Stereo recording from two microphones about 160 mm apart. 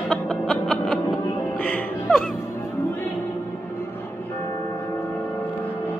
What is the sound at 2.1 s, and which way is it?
Music, centre (ahead or behind).